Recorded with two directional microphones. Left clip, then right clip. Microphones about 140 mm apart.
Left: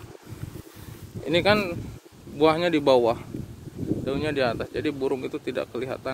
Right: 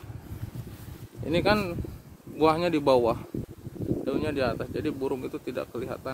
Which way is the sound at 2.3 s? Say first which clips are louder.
Left 3 dB; 30° right (ahead or behind).